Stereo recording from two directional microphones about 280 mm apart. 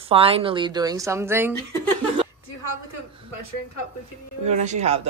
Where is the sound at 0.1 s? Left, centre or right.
Centre.